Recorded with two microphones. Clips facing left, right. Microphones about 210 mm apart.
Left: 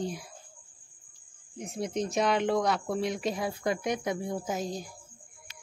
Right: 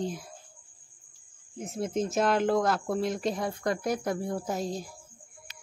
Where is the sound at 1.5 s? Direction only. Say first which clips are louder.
Right 2 dB; centre (ahead or behind).